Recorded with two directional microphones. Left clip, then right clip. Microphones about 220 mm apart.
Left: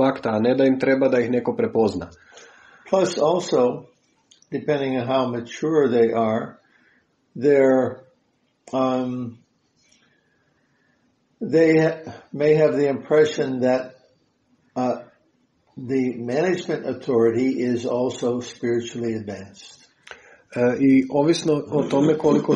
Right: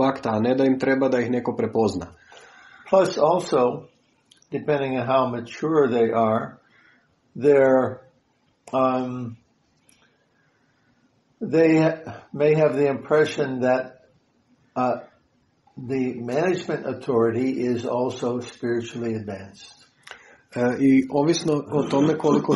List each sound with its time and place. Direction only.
0.0 s speech: 15° right (ahead or behind)
2.8 s a sound: 20° right (ahead or behind)
3.5 s speech: 20° right (ahead or behind)
11.4 s speech: 20° right (ahead or behind)
15.9 s speech: 20° right (ahead or behind)